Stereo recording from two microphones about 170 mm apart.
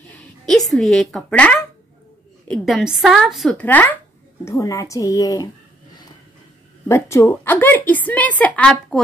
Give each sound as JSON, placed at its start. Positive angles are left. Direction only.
{"t": 0.1, "sound": "a woman's voice", "side_deg": 0}
{"t": 6.9, "sound": "speech", "side_deg": 15}
{"t": 7.9, "sound": "a sound", "side_deg": 10}